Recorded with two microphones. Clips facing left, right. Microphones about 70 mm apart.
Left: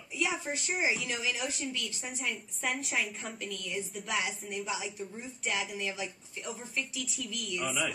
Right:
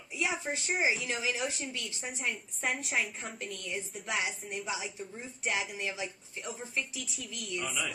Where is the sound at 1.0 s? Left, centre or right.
Right.